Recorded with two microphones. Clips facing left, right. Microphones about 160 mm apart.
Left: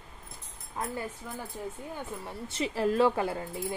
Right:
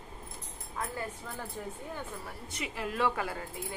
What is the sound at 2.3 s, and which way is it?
Speech, 30° left (ahead or behind).